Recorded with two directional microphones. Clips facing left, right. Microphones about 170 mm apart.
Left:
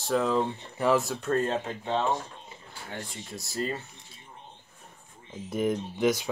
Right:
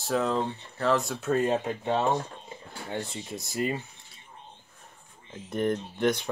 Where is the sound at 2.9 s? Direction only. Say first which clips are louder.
Right 5 dB; 20° right (ahead or behind).